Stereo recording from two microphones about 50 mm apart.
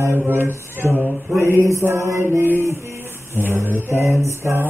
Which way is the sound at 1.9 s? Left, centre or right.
Right.